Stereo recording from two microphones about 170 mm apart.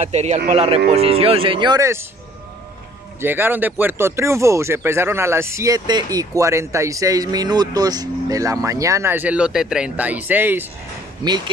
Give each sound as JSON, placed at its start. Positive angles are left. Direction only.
{"t": 0.0, "sound": "speech", "side_deg": -40}
{"t": 3.2, "sound": "speech", "side_deg": -10}
{"t": 11.2, "sound": "speech", "side_deg": -25}